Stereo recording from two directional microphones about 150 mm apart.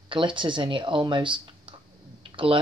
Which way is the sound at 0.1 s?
35° right (ahead or behind).